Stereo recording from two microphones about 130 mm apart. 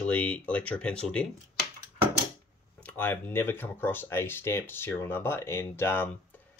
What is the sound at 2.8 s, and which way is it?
Speech, 15° left (ahead or behind).